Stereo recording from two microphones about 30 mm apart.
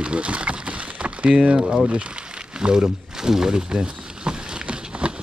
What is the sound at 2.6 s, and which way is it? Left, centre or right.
Speech, right.